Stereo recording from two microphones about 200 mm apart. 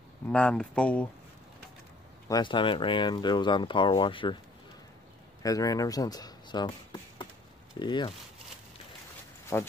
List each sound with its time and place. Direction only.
0.3 s speech: 5° left (ahead or behind)
2.2 s speech: 20° left (ahead or behind)
5.4 s speech: 15° left (ahead or behind)
9.5 s speech: 15° left (ahead or behind)